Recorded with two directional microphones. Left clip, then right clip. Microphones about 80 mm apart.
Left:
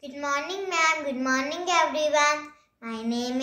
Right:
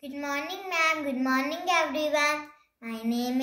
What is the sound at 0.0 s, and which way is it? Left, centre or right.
A child's voice, left.